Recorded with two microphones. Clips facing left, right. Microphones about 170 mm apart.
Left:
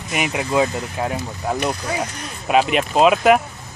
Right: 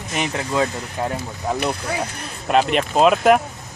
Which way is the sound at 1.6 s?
5° right (ahead or behind).